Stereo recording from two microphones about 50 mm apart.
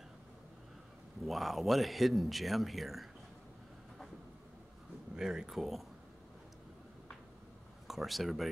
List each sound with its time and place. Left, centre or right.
1.2 s speech: centre
5.1 s speech: centre
7.9 s speech: centre